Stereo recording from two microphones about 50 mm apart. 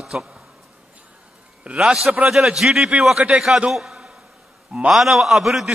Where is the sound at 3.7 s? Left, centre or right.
Centre.